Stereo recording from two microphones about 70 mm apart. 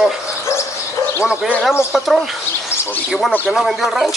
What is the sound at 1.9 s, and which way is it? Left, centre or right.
Speech, centre.